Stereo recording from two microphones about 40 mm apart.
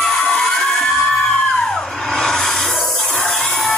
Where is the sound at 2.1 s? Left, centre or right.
Centre.